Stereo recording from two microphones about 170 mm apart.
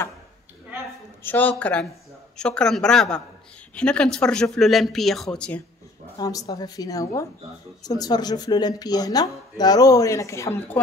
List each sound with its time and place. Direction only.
1.2 s speech: 10° left (ahead or behind)
6.1 s speech: 20° left (ahead or behind)